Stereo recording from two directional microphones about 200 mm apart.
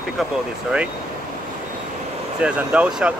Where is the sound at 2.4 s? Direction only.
5° right (ahead or behind).